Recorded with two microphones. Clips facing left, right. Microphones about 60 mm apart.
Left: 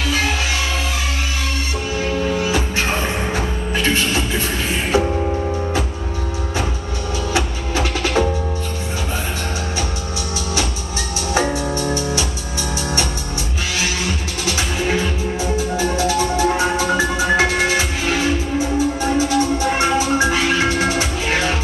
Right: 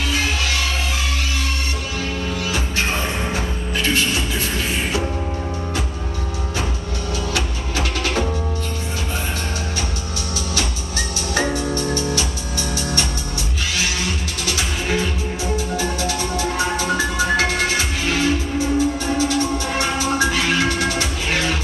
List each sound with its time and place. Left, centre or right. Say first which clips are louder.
2.0 s music: left 7 dB; left
7.3 s music: left 3 dB; left
11.3 s music: left 2 dB; centre
14.4 s music: left 4 dB; left